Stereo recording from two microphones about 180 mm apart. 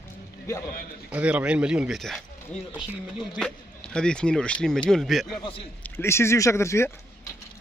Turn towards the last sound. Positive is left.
turn(degrees=15)  # may be behind; listen again after turning